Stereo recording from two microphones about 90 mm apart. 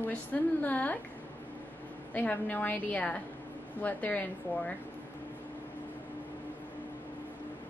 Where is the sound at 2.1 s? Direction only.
20° left (ahead or behind).